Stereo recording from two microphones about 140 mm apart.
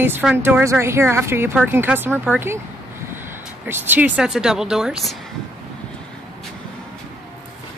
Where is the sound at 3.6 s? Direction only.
15° right (ahead or behind).